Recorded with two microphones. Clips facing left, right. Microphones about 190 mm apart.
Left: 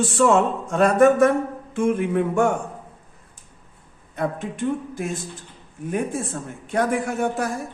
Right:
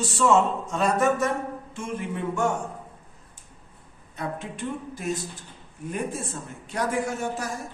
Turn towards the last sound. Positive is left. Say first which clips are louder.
# left 5 dB
turn(degrees=60)  # may be behind; listen again after turning